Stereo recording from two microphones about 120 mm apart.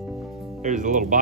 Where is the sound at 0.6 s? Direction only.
80° right.